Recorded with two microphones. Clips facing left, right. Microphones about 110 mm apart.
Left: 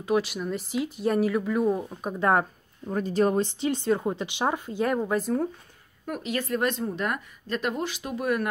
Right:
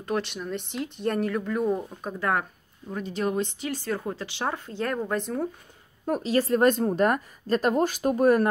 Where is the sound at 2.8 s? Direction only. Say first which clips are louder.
Left 5 dB; 40° left (ahead or behind); by 5.5 s centre (ahead or behind).